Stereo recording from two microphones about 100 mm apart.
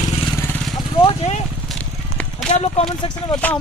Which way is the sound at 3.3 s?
10° left (ahead or behind).